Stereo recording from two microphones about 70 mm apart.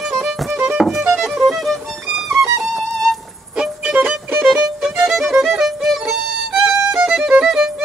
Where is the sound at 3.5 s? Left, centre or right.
Centre.